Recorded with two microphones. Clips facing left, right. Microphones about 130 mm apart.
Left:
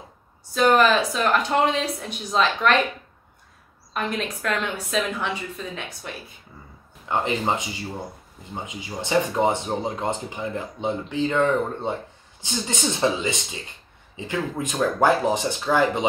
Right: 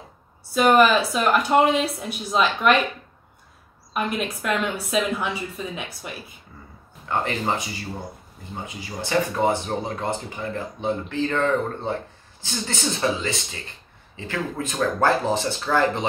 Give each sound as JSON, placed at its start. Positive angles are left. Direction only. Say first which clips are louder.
{"t": 0.6, "sound": "speech", "louder": "right 1 dB", "side_deg": -10}
{"t": 3.9, "sound": "speech", "louder": "right 1 dB", "side_deg": -10}
{"t": 7.1, "sound": "speech", "louder": "left 1 dB", "side_deg": 20}